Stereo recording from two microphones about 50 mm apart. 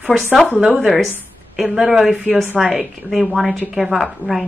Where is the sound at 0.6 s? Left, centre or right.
Right.